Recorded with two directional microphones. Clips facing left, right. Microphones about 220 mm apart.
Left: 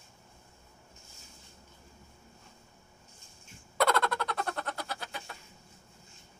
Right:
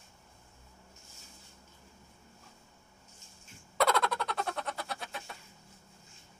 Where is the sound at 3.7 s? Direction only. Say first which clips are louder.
Left 1 dB; centre (ahead or behind).